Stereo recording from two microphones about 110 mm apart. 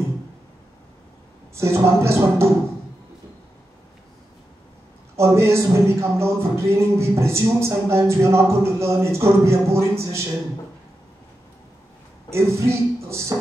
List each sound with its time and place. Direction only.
1.6 s a man's voice: 25° right (ahead or behind)
5.1 s a man's voice: 25° right (ahead or behind)
12.3 s speech: 25° right (ahead or behind)